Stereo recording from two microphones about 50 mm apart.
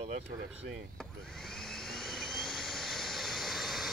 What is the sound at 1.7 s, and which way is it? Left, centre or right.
Vehicle, centre.